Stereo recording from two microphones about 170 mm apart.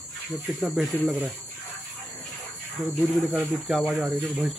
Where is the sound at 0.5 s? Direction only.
Centre (ahead or behind).